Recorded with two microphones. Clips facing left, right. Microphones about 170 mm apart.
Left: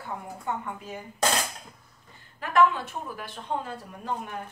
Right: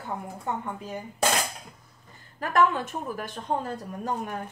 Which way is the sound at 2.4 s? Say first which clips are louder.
Left 1 dB; 45° right (ahead or behind).